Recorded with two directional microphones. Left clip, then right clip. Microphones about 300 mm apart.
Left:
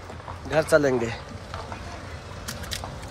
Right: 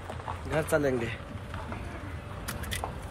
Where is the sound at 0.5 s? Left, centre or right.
Left.